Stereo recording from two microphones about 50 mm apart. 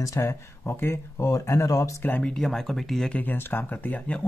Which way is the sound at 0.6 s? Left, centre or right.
Left.